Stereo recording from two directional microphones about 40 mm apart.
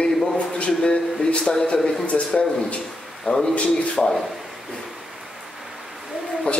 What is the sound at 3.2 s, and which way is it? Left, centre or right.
Speech, centre.